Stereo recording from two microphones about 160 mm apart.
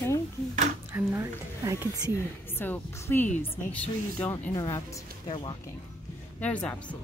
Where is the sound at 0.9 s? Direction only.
15° right (ahead or behind).